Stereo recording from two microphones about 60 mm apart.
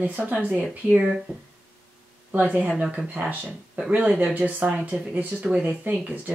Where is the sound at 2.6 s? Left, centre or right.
Centre.